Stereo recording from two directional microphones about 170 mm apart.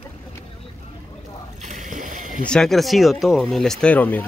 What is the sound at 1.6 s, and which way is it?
Rowboat, 45° right (ahead or behind).